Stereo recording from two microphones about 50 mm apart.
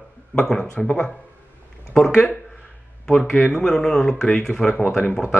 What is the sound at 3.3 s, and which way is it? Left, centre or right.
Speech, left.